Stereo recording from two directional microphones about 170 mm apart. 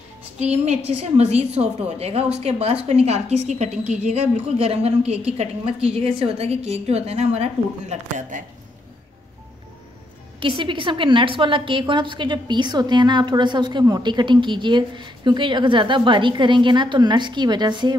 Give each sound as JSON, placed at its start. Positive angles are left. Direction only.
{"t": 0.5, "sound": "a woman's voice", "side_deg": -40}
{"t": 10.4, "sound": "a woman's voice", "side_deg": -30}